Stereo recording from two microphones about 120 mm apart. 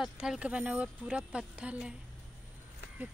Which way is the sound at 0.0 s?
5° right (ahead or behind).